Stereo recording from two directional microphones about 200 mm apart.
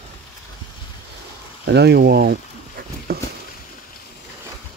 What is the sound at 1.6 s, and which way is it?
Speech, 55° right (ahead or behind).